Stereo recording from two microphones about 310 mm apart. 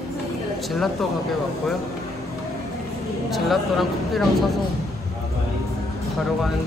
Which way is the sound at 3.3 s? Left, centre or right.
Centre.